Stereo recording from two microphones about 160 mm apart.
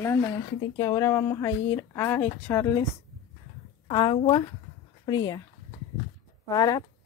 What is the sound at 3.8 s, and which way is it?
A woman's voice, 30° left (ahead or behind).